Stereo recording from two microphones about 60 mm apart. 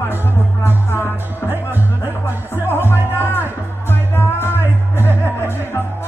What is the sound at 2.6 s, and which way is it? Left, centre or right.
Music, left.